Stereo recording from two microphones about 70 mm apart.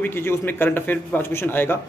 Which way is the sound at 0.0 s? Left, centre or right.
Left.